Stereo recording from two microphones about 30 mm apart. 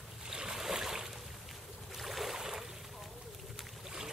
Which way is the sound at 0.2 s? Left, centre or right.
Right.